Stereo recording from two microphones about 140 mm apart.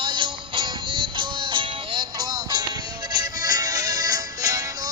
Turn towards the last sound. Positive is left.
turn(degrees=-25)  # may be behind; listen again after turning